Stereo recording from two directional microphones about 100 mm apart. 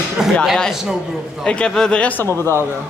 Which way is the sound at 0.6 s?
Centre (ahead or behind).